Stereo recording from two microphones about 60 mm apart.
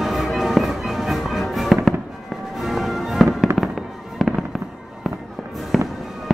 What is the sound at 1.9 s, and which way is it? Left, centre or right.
Fireworks, centre.